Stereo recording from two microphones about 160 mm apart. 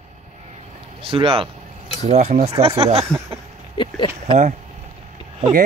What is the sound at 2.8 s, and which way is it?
Speech, 40° right (ahead or behind).